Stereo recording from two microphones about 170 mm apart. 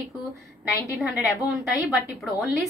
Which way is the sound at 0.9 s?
5° right (ahead or behind).